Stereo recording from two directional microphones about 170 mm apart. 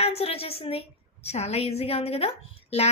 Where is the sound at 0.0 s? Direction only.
35° left (ahead or behind).